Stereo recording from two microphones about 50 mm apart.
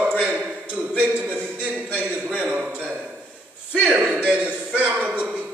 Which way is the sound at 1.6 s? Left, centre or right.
Right.